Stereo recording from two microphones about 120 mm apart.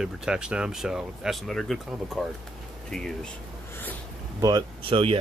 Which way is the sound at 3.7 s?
15° left (ahead or behind).